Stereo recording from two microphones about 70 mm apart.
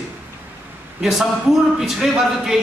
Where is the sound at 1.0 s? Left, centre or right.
Centre.